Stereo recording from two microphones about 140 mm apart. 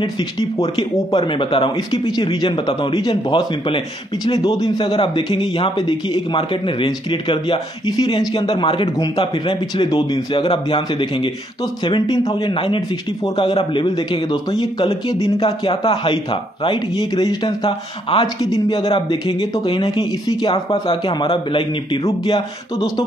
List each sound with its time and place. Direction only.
0.0 s speech: 30° left (ahead or behind)
8.9 s a man's voice: 25° left (ahead or behind)
9.2 s speech: 40° left (ahead or behind)